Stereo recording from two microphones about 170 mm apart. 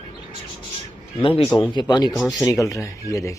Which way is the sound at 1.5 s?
25° left (ahead or behind).